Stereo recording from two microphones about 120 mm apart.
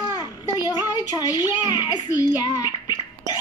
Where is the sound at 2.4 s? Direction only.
35° left (ahead or behind).